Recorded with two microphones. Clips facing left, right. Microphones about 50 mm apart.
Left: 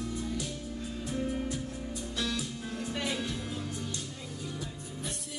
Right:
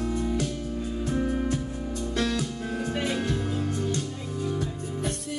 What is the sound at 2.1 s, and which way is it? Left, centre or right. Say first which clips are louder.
Music: right 7 dB; right.